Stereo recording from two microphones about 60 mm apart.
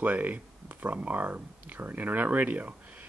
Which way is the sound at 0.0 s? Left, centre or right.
Right.